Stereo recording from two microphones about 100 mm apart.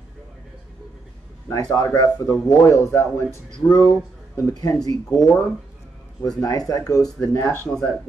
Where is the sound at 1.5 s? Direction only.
35° left (ahead or behind).